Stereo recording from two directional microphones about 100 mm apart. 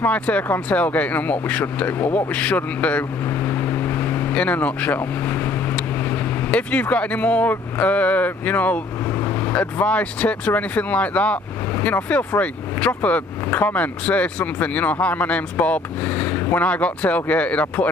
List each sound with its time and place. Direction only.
0.0 s speech: 15° left (ahead or behind)